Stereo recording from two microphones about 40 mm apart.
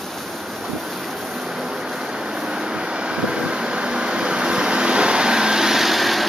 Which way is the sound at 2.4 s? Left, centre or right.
Right.